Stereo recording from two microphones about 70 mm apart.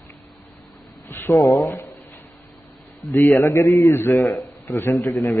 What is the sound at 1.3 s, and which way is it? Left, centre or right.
Speech, left.